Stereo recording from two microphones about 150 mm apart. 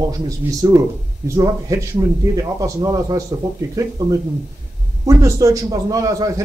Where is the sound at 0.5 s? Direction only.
20° right (ahead or behind).